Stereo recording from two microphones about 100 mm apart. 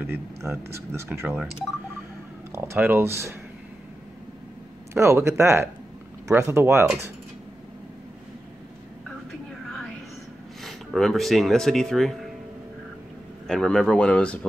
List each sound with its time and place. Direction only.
0.0 s speech: 25° right (ahead or behind)
2.5 s speech: 25° right (ahead or behind)
4.9 s speech: 30° right (ahead or behind)
9.7 s a sound: centre (ahead or behind)
10.6 s speech: centre (ahead or behind)
13.5 s speech: 5° left (ahead or behind)